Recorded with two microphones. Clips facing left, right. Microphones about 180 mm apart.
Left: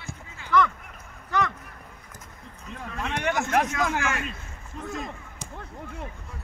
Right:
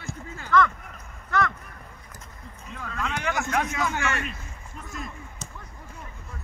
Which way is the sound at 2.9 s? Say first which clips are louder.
Right 1 dB; 25° left (ahead or behind).